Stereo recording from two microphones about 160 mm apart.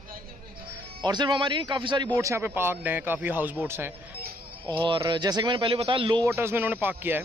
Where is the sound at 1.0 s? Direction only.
25° right (ahead or behind).